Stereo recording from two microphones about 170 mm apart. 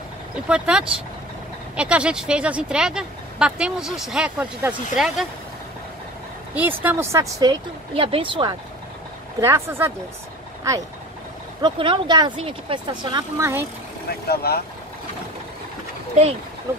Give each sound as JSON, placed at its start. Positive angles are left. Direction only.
{"t": 0.5, "sound": "speech", "side_deg": -5}
{"t": 6.5, "sound": "speech", "side_deg": -10}
{"t": 7.9, "sound": "speech", "side_deg": -30}
{"t": 9.4, "sound": "speech", "side_deg": -15}
{"t": 11.6, "sound": "speech", "side_deg": -30}
{"t": 14.2, "sound": "speech", "side_deg": 65}